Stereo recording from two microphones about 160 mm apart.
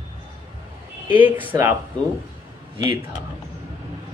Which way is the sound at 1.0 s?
10° right (ahead or behind).